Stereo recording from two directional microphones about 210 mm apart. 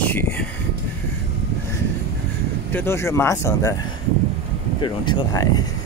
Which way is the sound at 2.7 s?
10° left (ahead or behind).